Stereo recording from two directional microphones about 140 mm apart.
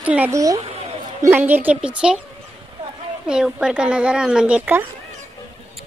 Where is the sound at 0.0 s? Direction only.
10° right (ahead or behind).